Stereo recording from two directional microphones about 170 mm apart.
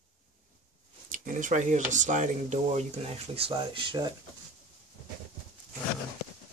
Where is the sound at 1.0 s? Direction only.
50° right (ahead or behind).